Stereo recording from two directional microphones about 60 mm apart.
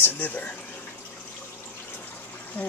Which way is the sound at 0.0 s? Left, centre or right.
Left.